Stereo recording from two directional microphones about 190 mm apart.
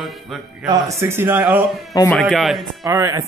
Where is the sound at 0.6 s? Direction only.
15° right (ahead or behind).